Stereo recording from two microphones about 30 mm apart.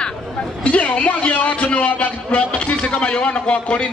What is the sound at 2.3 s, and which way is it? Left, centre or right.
A man's voice, left.